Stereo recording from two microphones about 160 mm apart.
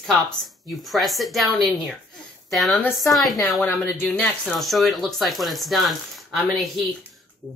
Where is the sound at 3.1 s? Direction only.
Centre (ahead or behind).